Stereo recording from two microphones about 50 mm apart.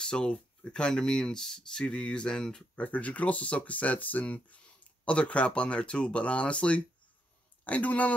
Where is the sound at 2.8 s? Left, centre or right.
Left.